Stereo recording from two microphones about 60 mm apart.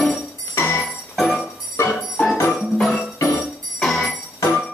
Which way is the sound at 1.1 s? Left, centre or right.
Centre.